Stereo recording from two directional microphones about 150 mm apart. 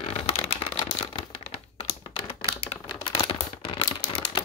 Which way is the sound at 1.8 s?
35° left (ahead or behind).